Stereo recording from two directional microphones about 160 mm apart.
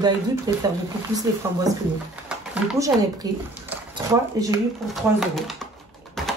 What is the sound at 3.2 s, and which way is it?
Speech, 25° right (ahead or behind).